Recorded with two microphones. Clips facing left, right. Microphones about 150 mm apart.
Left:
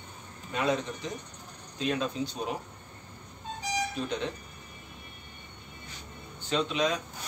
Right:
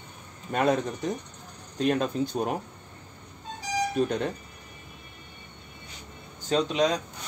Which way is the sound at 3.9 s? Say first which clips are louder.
Right 7 dB; 50° right (ahead or behind).